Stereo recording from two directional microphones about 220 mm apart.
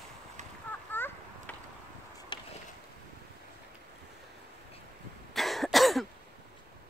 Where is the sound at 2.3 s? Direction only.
20° left (ahead or behind).